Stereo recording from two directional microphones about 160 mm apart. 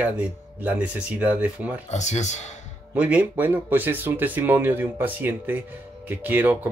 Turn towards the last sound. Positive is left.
turn(degrees=-10)  # may be behind; listen again after turning